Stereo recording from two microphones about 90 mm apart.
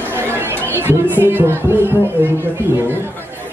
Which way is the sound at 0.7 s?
25° right (ahead or behind).